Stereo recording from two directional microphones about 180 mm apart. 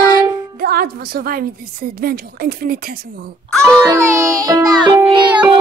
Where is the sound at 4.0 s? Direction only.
15° right (ahead or behind).